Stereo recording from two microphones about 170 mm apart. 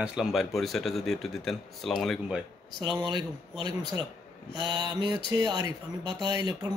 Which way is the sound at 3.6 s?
25° right (ahead or behind).